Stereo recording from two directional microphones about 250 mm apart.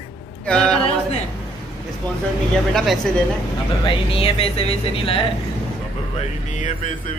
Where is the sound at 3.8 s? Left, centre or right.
Left.